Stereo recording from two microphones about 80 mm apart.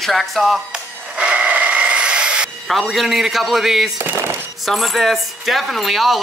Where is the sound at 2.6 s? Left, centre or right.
Centre.